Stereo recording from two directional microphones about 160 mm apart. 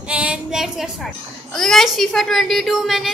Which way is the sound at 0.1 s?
5° right (ahead or behind).